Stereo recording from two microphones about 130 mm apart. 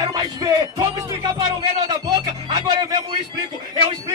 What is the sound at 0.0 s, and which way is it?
Music, 30° right (ahead or behind).